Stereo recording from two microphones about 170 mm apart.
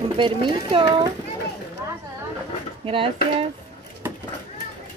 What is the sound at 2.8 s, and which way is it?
Speech, 30° right (ahead or behind).